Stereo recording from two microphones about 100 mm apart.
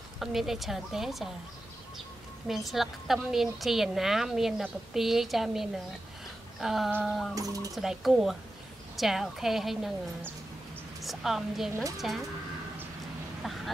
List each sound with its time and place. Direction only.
0.2 s a woman's voice: 5° right (ahead or behind)
2.4 s a woman's voice: centre (ahead or behind)
7.3 s speech: 35° right (ahead or behind)
7.7 s a woman's voice: centre (ahead or behind)
11.0 s a woman's voice: centre (ahead or behind)